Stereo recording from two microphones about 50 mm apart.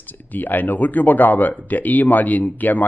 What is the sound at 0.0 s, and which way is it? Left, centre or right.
Speech, left.